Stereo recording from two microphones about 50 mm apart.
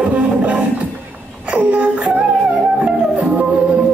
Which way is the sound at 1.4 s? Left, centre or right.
Right.